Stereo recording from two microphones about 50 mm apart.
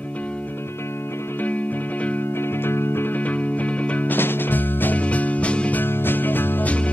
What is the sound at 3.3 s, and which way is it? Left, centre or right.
Music, left.